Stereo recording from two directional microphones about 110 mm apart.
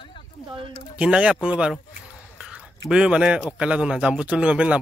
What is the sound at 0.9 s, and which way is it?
A man's voice, 10° right (ahead or behind).